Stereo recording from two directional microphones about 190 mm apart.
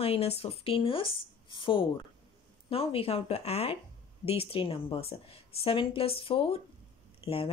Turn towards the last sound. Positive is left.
turn(degrees=30)  # may be behind; listen again after turning